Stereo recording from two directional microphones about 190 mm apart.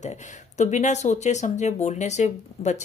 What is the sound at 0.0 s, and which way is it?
Speech, 35° left (ahead or behind).